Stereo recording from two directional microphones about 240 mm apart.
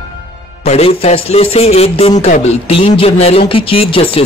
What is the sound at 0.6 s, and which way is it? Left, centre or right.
A man's voice, left.